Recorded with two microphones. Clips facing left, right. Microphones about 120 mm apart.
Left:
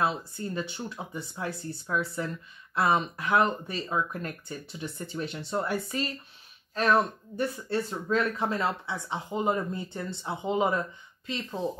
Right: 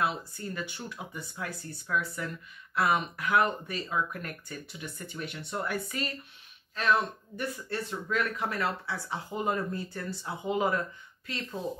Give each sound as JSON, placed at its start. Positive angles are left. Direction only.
{"t": 0.0, "sound": "speech", "side_deg": 30}
{"t": 6.7, "sound": "speech", "side_deg": 40}